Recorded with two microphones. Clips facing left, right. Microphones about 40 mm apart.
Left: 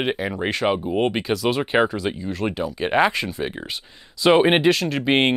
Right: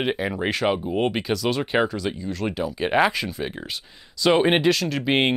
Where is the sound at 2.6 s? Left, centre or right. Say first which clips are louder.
Left 1 dB; centre.